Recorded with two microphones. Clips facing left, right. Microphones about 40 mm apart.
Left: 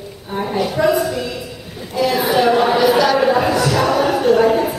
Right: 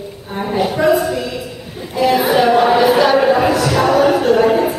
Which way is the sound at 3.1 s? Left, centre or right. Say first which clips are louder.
Right 2 dB; centre.